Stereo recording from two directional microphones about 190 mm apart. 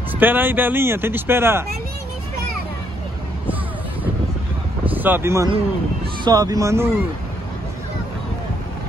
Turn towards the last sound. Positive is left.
turn(degrees=-15)  # may be behind; listen again after turning